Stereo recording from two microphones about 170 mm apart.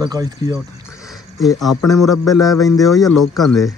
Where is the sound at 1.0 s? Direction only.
Centre (ahead or behind).